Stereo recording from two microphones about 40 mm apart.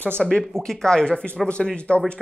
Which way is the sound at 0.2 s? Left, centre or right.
Centre.